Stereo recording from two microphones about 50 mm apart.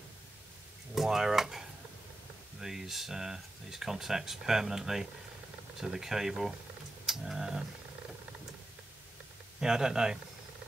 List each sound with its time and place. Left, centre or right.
0.9 s speech: centre
9.6 s speech: centre